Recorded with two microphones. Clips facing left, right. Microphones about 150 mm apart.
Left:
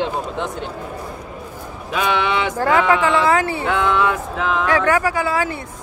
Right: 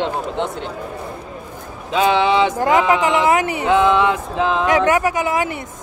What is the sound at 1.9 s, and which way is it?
Speech, 25° right (ahead or behind).